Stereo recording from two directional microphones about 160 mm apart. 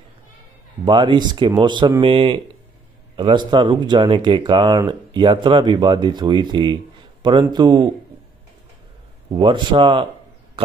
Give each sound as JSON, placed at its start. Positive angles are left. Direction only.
{"t": 0.8, "sound": "speech", "side_deg": -30}
{"t": 9.3, "sound": "speech", "side_deg": -30}